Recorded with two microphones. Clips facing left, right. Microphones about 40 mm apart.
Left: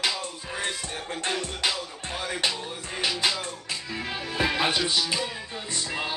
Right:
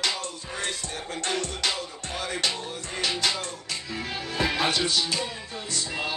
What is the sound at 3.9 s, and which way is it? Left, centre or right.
Music, centre.